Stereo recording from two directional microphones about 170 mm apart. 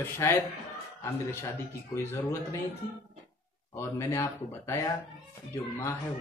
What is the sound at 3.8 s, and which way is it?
A man's voice, 15° left (ahead or behind).